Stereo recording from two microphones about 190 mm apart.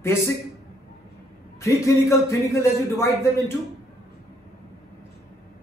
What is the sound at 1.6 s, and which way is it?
A man's voice, 15° left (ahead or behind).